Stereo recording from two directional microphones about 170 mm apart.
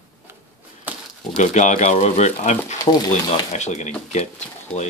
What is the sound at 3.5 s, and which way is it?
Speech, 45° left (ahead or behind).